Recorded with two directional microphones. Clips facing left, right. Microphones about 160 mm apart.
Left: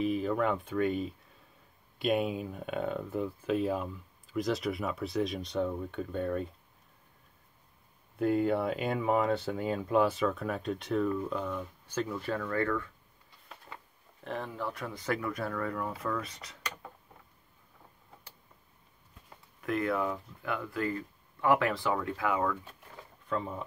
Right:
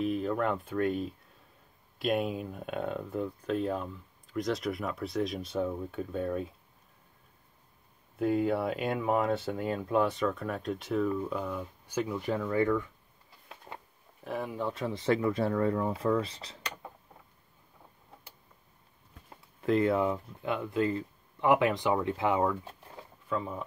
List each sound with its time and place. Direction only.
0.0 s speech: centre (ahead or behind)
8.2 s speech: centre (ahead or behind); by 12.9 s 15° right (ahead or behind)
14.2 s speech: 10° right (ahead or behind); by 16.5 s 30° right (ahead or behind)
19.6 s speech: 25° right (ahead or behind)
23.2 s speech: 5° right (ahead or behind)